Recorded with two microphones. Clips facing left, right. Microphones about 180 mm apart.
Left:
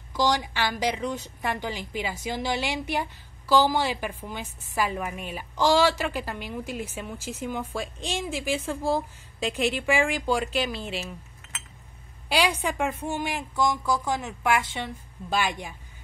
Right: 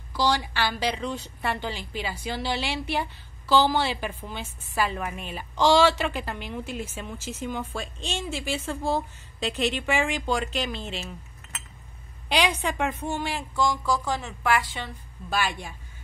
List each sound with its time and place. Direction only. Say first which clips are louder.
0.1 s a woman's voice: even; 15° left (ahead or behind)
12.3 s a woman's voice: even; 10° left (ahead or behind)